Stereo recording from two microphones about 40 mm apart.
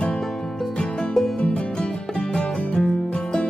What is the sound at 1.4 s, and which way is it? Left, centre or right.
Music, left.